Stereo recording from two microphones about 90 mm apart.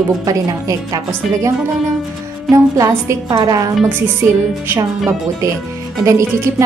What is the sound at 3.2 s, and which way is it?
Speech, 50° right (ahead or behind).